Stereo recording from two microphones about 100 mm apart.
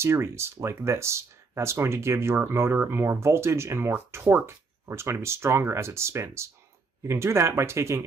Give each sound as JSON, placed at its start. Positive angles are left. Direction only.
{"t": 0.0, "sound": "speech", "side_deg": -25}